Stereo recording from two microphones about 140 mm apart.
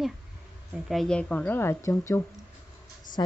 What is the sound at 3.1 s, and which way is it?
Speech, 70° left (ahead or behind).